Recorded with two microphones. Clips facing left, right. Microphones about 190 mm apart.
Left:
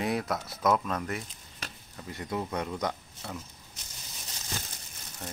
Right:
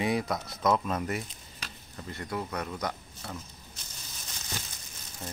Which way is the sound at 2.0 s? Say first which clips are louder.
Left 1 dB; 15° left (ahead or behind).